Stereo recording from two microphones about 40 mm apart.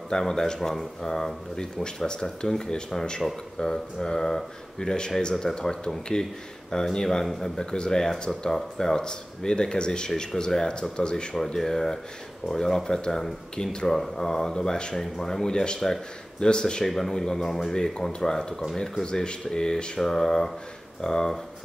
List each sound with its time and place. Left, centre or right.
0.1 s speech: centre
1.0 s speech: centre
8.1 s speech: centre; by 11.2 s left
11.3 s speech: centre
13.8 s speech: centre